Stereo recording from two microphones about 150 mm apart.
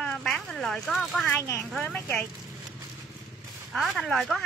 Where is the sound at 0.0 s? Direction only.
Centre (ahead or behind).